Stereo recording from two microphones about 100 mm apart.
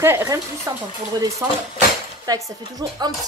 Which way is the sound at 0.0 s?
25° right (ahead or behind).